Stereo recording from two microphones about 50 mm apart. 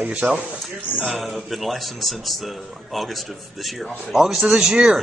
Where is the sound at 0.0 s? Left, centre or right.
Right.